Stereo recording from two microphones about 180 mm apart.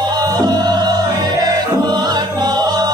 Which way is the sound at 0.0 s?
25° right (ahead or behind).